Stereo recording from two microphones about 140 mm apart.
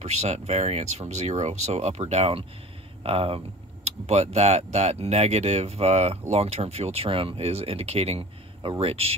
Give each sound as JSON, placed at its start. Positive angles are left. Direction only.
{"t": 0.0, "sound": "speech", "side_deg": -55}